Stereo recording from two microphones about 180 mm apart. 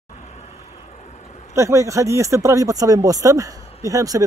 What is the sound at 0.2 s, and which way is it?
Vehicle, 40° left (ahead or behind).